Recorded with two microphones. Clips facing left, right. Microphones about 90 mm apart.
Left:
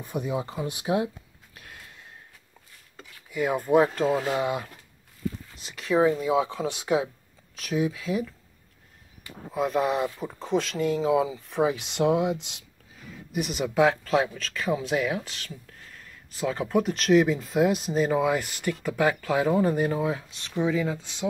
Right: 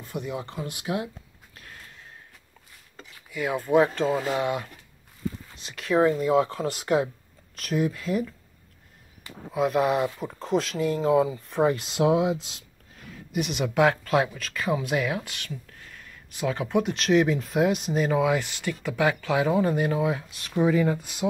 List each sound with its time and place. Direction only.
0.0 s speech: 15° left (ahead or behind)
0.6 s speech: 25° left (ahead or behind)
3.3 s speech: 5° left (ahead or behind)
5.7 s speech: centre (ahead or behind)
9.5 s speech: centre (ahead or behind)
16.3 s speech: centre (ahead or behind)
20.2 s speech: 30° left (ahead or behind)
20.5 s speech: 10° right (ahead or behind)